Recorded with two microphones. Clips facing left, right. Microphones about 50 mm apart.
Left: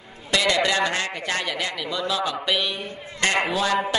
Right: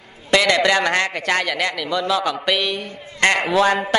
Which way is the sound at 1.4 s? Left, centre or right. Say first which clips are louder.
Right 5 dB; right.